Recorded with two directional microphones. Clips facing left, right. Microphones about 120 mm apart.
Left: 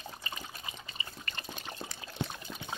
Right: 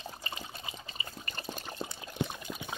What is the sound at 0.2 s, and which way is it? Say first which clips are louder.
Water: right 1 dB; 30° right (ahead or behind).